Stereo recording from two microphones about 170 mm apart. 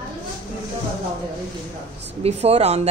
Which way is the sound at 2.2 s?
35° right (ahead or behind).